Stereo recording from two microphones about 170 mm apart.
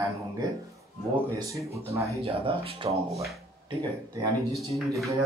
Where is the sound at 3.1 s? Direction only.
Centre (ahead or behind).